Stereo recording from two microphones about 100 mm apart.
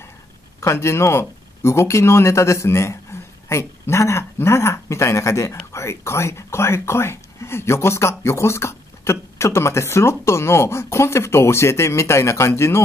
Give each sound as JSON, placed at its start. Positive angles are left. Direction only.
{"t": 0.6, "sound": "speech", "side_deg": 25}